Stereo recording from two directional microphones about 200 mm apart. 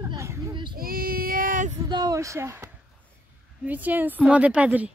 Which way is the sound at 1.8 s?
20° right (ahead or behind).